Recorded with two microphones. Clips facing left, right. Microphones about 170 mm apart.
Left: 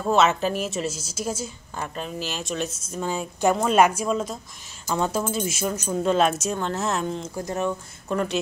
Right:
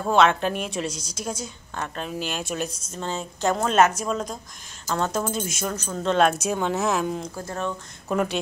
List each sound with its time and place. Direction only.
0.0 s a woman's voice: centre (ahead or behind)
2.9 s a woman's voice: 10° left (ahead or behind)
6.1 s a woman's voice: centre (ahead or behind)
7.3 s speech: 15° left (ahead or behind)
8.1 s a woman's voice: 5° right (ahead or behind)